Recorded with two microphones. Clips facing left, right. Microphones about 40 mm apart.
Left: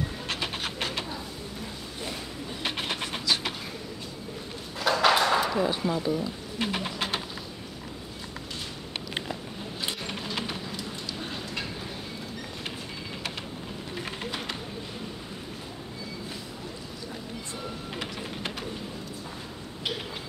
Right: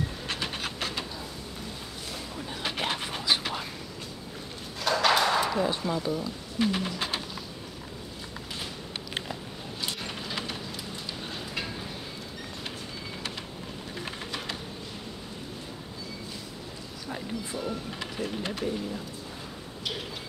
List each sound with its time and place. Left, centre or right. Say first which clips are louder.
0.3 s bird: left 2 dB; centre
4.7 s a sound: left 2 dB; centre
6.6 s speech: right 2 dB; centre